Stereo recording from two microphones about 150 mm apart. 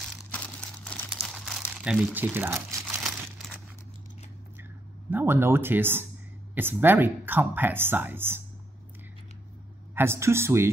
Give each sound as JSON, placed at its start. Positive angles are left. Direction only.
{"t": 0.3, "sound": "crumpling", "side_deg": 10}
{"t": 1.1, "sound": "crumpling", "side_deg": -5}
{"t": 5.1, "sound": "speech", "side_deg": -15}
{"t": 9.9, "sound": "speech", "side_deg": -15}